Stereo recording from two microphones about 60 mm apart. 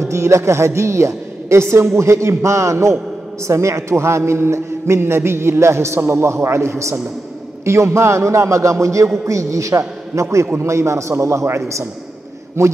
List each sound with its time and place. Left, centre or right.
0.0 s a woman's voice: right